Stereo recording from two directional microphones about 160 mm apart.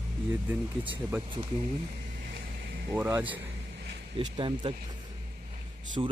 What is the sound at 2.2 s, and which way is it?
Vehicle, 90° right.